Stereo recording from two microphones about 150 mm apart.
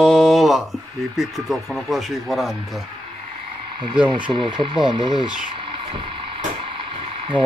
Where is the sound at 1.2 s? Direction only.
Centre (ahead or behind).